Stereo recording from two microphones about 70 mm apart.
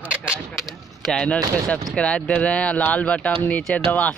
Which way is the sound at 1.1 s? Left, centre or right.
Centre.